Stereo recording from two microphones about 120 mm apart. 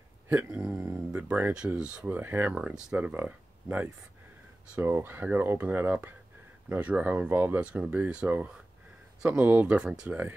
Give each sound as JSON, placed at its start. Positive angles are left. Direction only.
{"t": 0.3, "sound": "speech", "side_deg": -15}